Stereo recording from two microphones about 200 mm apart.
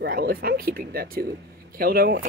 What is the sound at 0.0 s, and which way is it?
Speech, 50° right (ahead or behind).